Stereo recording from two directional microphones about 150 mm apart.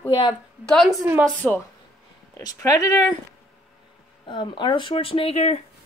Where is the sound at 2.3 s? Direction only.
20° left (ahead or behind).